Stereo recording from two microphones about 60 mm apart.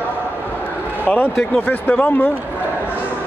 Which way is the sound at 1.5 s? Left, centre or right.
Left.